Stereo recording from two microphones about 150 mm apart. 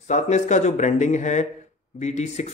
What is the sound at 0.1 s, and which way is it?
Speech, 50° left (ahead or behind).